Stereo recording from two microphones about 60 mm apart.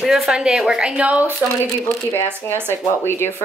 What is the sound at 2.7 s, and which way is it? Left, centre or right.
Speech, left.